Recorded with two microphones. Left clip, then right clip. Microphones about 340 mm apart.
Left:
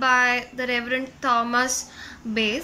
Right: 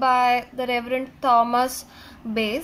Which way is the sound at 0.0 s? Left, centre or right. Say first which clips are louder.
Right 1 dB; centre.